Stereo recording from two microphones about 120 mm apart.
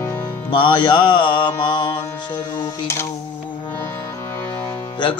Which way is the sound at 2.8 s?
20° left (ahead or behind).